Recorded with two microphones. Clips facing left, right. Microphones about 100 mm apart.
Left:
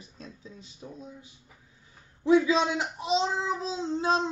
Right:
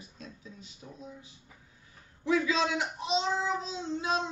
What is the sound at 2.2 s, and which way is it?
A child's voice, 25° left (ahead or behind).